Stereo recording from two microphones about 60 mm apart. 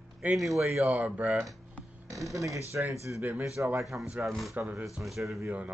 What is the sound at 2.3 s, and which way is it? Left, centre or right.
Speech, right.